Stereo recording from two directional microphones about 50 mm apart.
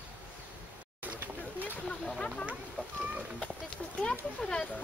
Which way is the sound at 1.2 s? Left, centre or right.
Right.